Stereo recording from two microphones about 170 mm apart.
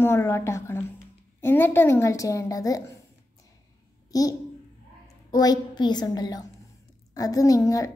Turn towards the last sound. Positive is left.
turn(degrees=20)  # may be behind; listen again after turning